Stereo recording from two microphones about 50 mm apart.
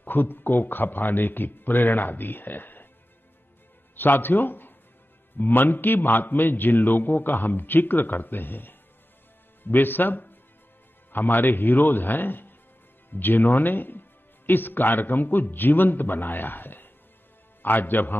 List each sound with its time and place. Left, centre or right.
0.0 s speech: left
3.9 s a man's voice: left